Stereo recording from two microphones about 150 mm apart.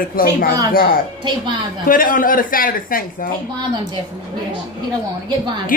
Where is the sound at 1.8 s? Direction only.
65° left (ahead or behind).